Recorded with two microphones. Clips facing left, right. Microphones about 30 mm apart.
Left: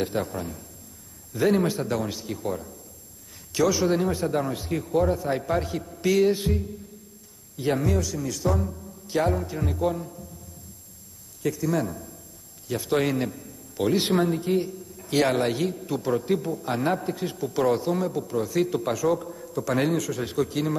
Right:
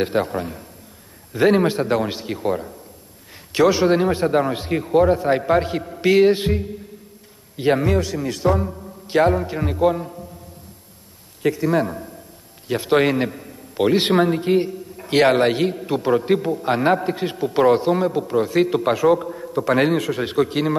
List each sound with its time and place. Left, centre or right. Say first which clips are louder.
0.0 s a man's voice: right 7 dB; right
11.4 s a man's voice: right 7 dB; right